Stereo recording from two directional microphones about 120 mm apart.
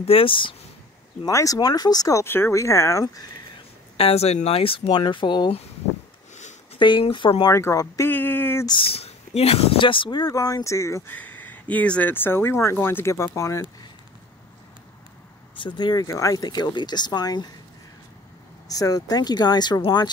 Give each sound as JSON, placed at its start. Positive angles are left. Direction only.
{"t": 0.0, "sound": "speech", "side_deg": 50}
{"t": 1.2, "sound": "speech", "side_deg": 30}
{"t": 3.9, "sound": "speech", "side_deg": 55}
{"t": 6.3, "sound": "a sound", "side_deg": 75}
{"t": 6.8, "sound": "speech", "side_deg": 45}
{"t": 7.5, "sound": "speech", "side_deg": 25}
{"t": 8.1, "sound": "a sound", "side_deg": 15}
{"t": 8.6, "sound": "speech", "side_deg": 45}
{"t": 11.1, "sound": "speech", "side_deg": 15}
{"t": 15.5, "sound": "speech", "side_deg": 40}
{"t": 18.7, "sound": "speech", "side_deg": 30}